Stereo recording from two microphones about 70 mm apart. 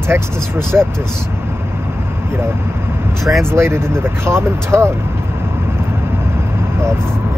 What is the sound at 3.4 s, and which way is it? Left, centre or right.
Speech, right.